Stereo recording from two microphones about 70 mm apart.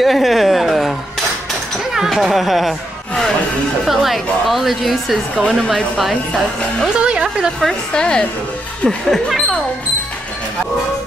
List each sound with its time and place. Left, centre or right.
0.0 s a sound: centre
2.0 s speech: centre
3.8 s a woman's voice: centre
5.3 s speech: centre
5.9 s a woman's voice: centre
7.0 s music: centre
7.6 s speech: centre